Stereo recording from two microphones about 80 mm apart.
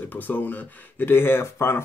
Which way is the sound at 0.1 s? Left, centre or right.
Left.